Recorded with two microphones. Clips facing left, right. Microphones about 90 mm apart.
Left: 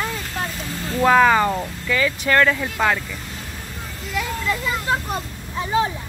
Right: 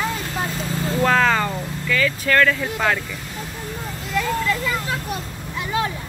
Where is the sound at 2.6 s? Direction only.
5° left (ahead or behind).